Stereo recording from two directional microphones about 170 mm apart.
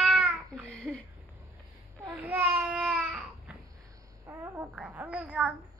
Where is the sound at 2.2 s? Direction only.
10° right (ahead or behind).